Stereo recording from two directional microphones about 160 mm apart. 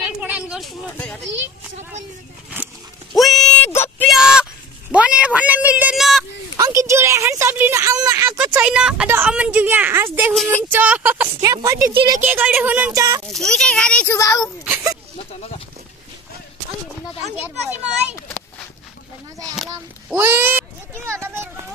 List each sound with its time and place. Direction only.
0.2 s a sound: 10° right (ahead or behind)
2.5 s a sound: 5° right (ahead or behind); by 4.1 s 15° left (ahead or behind)
4.1 s a sound: 5° right (ahead or behind)
4.9 s speech: 5° right (ahead or behind)
6.5 s a woman's voice: 20° right (ahead or behind)
10.3 s a child's voice: centre (ahead or behind)
10.7 s a woman's voice: 10° right (ahead or behind)
11.9 s speech: 35° right (ahead or behind)
12.2 s a woman's voice: 10° right (ahead or behind)
13.3 s a child's voice: 5° left (ahead or behind)
14.1 s a child's voice: 20° left (ahead or behind)
14.6 s speech: 10° right (ahead or behind)
15.1 s a sound: 40° left (ahead or behind)
20.1 s a woman's voice: 15° right (ahead or behind)